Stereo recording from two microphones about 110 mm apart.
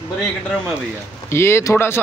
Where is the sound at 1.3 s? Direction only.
25° left (ahead or behind).